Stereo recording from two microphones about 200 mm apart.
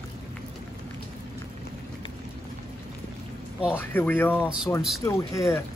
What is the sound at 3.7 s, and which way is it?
Speech, 10° left (ahead or behind).